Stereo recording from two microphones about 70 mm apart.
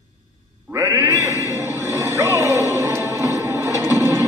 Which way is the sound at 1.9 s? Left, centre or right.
Right.